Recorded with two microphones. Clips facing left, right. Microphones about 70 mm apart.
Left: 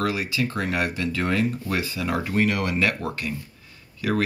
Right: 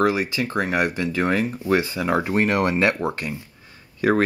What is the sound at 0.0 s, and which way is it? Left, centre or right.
Speech, right.